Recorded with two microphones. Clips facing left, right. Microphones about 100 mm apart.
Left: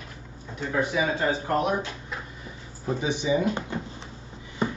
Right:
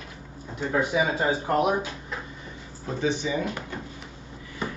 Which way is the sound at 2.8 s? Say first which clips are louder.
Even; 15° left (ahead or behind).